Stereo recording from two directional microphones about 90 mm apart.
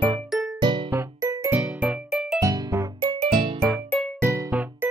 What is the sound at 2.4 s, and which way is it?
Music, 40° right (ahead or behind).